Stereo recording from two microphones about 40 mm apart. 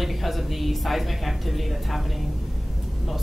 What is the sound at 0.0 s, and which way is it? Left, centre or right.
A woman's voice, centre.